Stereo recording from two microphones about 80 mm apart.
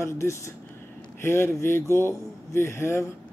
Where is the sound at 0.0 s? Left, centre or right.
Left.